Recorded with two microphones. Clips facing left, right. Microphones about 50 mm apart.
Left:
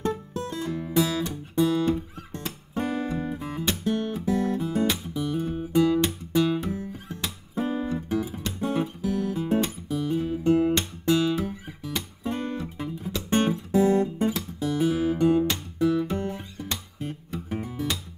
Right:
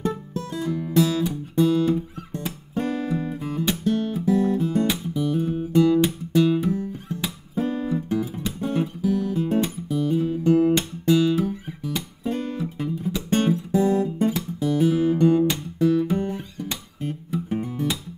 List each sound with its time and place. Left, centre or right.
0.3 s music: centre
1.2 s guitar: centre
2.8 s music: centre
7.1 s guitar: centre
7.9 s music: centre
12.3 s guitar: centre
12.5 s music: centre